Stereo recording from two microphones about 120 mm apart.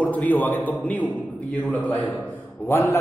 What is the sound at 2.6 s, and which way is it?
Speech, 20° left (ahead or behind).